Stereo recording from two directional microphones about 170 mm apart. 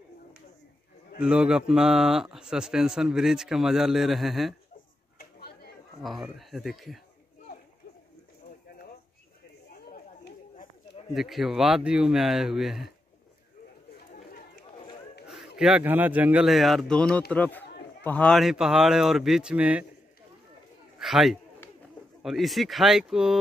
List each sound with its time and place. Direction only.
1.2 s a man's voice: 5° right (ahead or behind)
6.0 s a man's voice: centre (ahead or behind)
11.1 s a man's voice: centre (ahead or behind)
15.5 s a man's voice: 5° right (ahead or behind)
21.0 s a man's voice: centre (ahead or behind)